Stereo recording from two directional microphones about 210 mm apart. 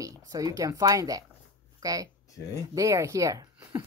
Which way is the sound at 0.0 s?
15° right (ahead or behind).